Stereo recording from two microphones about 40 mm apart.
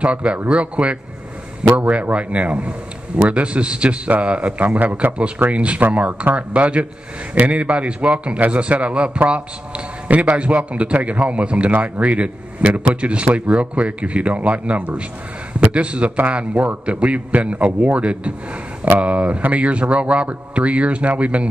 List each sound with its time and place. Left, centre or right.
0.0 s a man's voice: right